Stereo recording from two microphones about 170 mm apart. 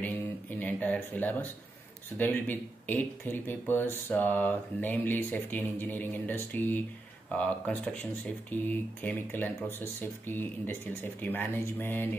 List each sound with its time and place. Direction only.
0.0 s speech: 10° left (ahead or behind)